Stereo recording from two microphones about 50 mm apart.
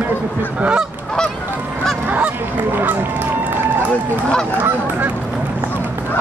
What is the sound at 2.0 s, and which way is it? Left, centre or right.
Goose, right.